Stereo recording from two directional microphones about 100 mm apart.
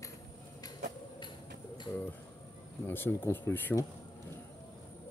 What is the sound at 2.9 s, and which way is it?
Speech, 20° left (ahead or behind).